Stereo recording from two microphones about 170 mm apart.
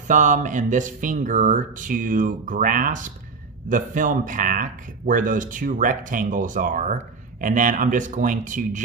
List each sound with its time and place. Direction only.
0.1 s speech: 50° right (ahead or behind)